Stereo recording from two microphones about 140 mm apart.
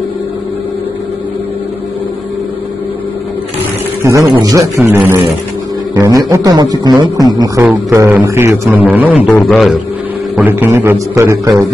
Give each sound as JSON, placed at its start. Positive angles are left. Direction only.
{"t": 4.0, "sound": "a man's voice", "side_deg": -20}
{"t": 9.5, "sound": "a man's voice", "side_deg": 0}
{"t": 10.3, "sound": "a man's voice", "side_deg": -15}